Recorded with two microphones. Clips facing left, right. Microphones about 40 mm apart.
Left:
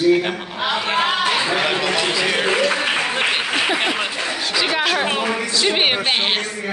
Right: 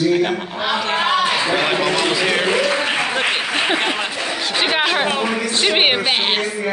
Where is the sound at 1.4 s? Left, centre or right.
Centre.